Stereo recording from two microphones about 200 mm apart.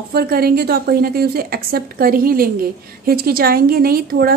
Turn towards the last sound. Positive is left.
turn(degrees=-50)  # may be behind; listen again after turning